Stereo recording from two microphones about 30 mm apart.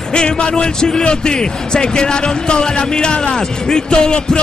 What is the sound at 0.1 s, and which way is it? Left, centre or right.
Speech, left.